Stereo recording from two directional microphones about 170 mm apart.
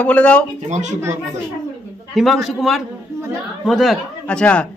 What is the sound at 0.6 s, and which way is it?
Speech, 45° right (ahead or behind).